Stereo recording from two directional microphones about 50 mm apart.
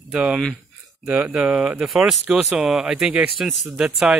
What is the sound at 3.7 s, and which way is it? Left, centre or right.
Speech, centre.